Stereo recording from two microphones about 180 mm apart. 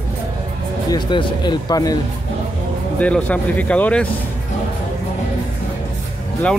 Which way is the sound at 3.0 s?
10° left (ahead or behind).